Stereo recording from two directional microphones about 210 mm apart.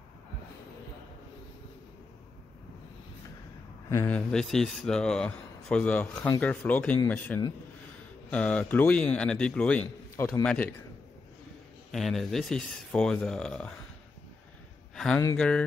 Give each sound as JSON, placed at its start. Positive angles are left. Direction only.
{"t": 3.9, "sound": "a man's voice", "side_deg": 10}
{"t": 11.9, "sound": "a man's voice", "side_deg": 0}
{"t": 15.0, "sound": "a man's voice", "side_deg": 5}